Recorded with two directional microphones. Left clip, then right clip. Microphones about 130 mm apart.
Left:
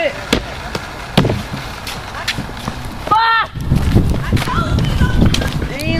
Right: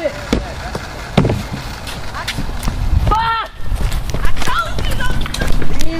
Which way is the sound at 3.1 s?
20° left (ahead or behind).